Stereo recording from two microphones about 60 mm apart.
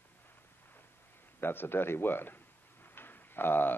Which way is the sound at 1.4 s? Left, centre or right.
Left.